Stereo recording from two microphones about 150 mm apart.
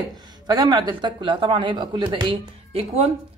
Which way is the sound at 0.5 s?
25° right (ahead or behind).